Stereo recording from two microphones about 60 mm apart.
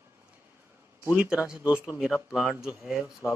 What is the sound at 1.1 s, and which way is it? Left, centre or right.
Speech, centre.